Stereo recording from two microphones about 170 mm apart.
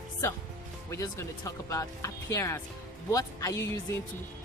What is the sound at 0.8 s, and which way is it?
A woman's voice, 20° left (ahead or behind).